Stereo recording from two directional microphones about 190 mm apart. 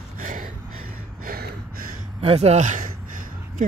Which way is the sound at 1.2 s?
50° right (ahead or behind).